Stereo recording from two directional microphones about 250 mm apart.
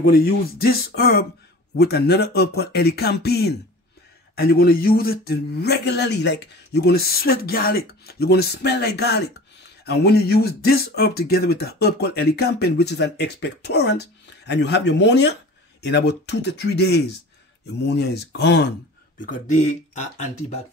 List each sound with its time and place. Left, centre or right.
0.0 s speech: left
19.1 s speech: left